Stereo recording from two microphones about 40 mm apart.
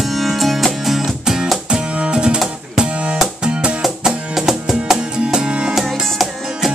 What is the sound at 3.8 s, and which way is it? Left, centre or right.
Music, centre.